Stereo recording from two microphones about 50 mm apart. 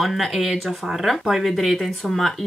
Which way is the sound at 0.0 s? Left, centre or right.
Centre.